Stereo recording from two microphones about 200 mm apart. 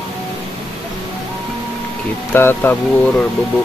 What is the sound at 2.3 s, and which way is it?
Speech, 10° left (ahead or behind).